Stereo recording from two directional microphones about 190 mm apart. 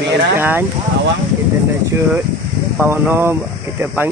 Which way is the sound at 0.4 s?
10° right (ahead or behind).